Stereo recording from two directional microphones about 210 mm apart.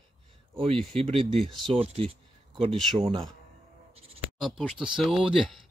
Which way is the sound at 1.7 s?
25° right (ahead or behind).